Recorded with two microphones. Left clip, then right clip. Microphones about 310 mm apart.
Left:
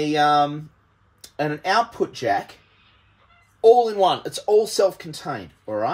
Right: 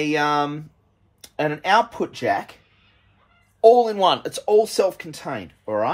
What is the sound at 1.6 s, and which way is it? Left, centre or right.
Speech, centre.